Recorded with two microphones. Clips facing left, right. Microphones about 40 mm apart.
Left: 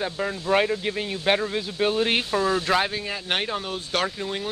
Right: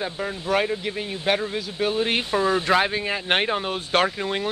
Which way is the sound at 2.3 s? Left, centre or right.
Centre.